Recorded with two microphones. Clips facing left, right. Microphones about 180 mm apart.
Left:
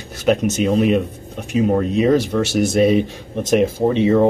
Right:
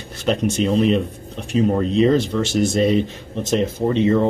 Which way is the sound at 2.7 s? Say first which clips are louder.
Left 3 dB; 10° left (ahead or behind).